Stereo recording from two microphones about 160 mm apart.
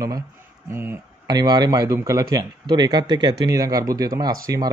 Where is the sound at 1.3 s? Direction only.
25° right (ahead or behind).